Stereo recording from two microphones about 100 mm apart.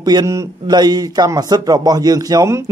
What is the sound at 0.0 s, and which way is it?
A man's voice, 40° right (ahead or behind).